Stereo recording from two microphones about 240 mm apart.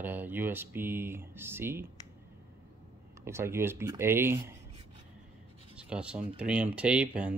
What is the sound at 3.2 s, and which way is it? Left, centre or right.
Speech, centre.